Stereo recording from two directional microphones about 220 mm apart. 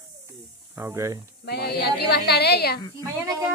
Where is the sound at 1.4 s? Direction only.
45° left (ahead or behind).